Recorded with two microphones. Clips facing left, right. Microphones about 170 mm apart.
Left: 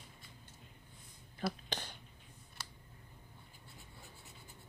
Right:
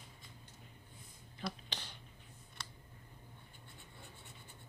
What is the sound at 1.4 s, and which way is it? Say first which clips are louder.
Speech: left 5 dB; 45° left (ahead or behind).